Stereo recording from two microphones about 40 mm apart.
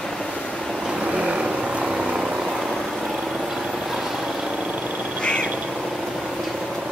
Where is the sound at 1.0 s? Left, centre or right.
Right.